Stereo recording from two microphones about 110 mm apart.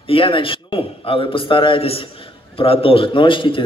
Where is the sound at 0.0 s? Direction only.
55° left (ahead or behind).